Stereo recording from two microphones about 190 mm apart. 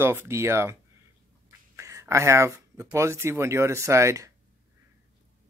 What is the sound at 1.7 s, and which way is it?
Speech, 15° right (ahead or behind).